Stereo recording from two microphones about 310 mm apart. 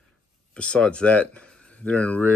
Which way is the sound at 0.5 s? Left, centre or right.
Centre.